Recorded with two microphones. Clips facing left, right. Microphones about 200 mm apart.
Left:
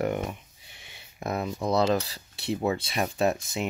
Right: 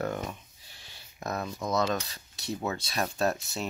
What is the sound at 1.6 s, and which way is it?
Cutlery, 30° left (ahead or behind).